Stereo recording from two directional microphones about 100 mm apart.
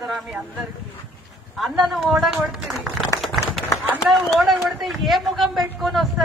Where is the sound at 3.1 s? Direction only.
Centre (ahead or behind).